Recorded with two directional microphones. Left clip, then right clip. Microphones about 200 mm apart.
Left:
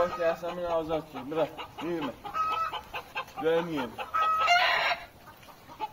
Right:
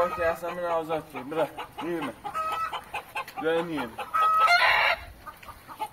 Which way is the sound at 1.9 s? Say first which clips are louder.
Left 1 dB; 70° right (ahead or behind).